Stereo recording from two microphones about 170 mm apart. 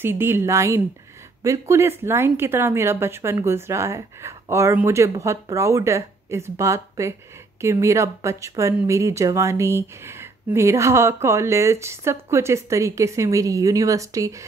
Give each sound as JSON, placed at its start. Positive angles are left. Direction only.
{"t": 0.0, "sound": "speech", "side_deg": -15}